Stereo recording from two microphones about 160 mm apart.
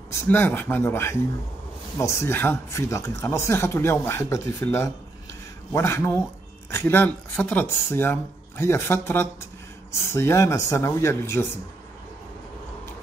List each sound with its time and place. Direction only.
0.1 s speech: 15° left (ahead or behind)